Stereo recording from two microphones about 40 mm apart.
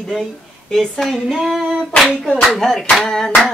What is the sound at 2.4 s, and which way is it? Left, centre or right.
Speech, centre.